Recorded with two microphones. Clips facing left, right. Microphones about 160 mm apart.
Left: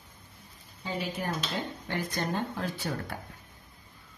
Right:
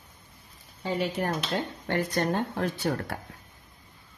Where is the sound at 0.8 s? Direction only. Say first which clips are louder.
Right 5 dB; 65° right (ahead or behind).